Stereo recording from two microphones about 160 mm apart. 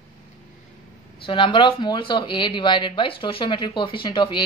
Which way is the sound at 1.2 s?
30° left (ahead or behind).